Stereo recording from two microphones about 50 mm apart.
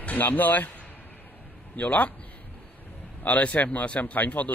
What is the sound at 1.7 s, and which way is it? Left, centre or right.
Speech, left.